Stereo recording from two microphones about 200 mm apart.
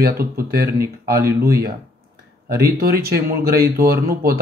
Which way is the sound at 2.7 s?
50° right (ahead or behind).